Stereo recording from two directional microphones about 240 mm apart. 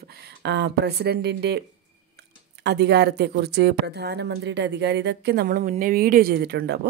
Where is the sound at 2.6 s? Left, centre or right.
Right.